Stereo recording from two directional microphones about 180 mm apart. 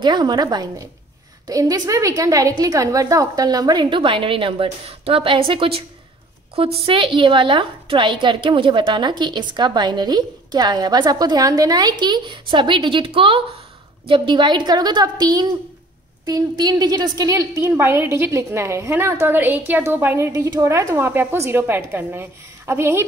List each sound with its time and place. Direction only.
0.0 s a woman's voice: 25° right (ahead or behind)